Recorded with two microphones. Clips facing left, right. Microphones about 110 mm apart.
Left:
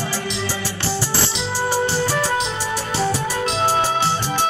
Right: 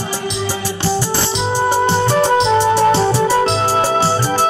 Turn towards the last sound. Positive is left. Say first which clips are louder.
# right 5 dB
turn(degrees=-35)  # may be behind; listen again after turning